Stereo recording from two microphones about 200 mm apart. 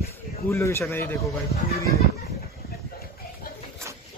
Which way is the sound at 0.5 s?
15° left (ahead or behind).